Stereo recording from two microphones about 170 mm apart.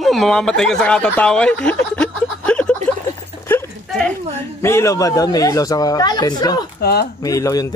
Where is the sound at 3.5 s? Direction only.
5° left (ahead or behind).